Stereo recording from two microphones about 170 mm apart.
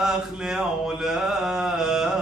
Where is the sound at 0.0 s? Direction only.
5° right (ahead or behind).